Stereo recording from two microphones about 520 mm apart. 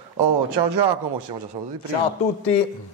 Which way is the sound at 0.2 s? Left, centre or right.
Right.